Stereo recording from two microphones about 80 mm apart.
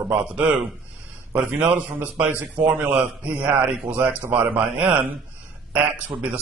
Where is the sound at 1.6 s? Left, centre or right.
Right.